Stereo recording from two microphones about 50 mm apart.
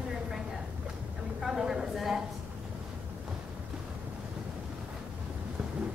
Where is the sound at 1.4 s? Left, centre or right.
Centre.